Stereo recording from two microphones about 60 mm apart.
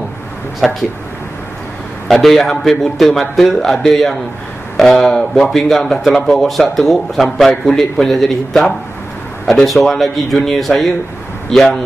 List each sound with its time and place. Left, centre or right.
0.6 s speech: centre
2.0 s speech: centre
9.5 s speech: centre